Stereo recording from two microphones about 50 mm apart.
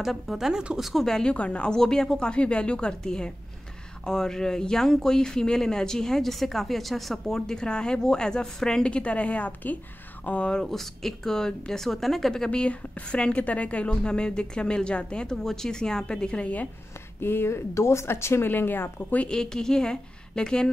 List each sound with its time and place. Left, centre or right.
0.0 s speech: centre
0.5 s speech: centre
0.8 s speech: centre
1.3 s speech: left
1.8 s speech: centre; by 10.5 s left
10.5 s speech: centre
12.4 s speech: left
17.2 s speech: left
18.5 s speech: left
18.9 s a woman's voice: left
19.2 s speech: centre